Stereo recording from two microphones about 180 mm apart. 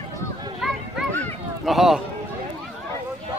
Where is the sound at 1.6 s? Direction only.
Centre (ahead or behind).